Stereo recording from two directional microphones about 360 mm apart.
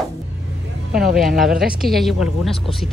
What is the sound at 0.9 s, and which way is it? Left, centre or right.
A woman's voice, centre.